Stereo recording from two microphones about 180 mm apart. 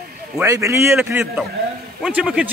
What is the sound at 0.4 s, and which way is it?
Speech, 15° right (ahead or behind).